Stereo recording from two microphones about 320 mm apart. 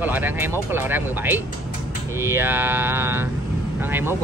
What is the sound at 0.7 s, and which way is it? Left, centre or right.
Mantra, centre.